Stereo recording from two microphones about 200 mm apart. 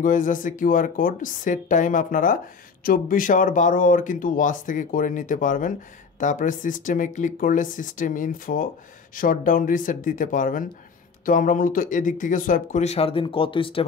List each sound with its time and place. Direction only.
0.0 s speech: 40° left (ahead or behind)